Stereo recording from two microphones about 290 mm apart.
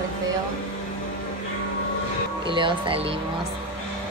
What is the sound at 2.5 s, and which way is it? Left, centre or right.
Speech, centre.